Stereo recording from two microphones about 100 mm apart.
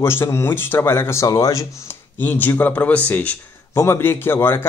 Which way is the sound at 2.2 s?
20° left (ahead or behind).